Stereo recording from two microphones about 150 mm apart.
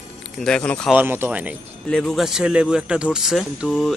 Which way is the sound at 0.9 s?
15° right (ahead or behind).